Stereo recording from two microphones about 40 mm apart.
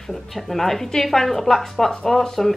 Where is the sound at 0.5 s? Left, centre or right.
Centre.